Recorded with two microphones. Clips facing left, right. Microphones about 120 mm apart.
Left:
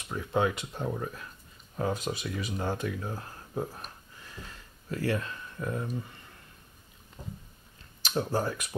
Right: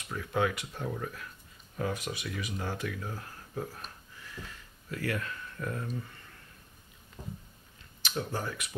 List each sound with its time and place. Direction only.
0.1 s speech: 25° left (ahead or behind)
8.0 s speech: 35° left (ahead or behind)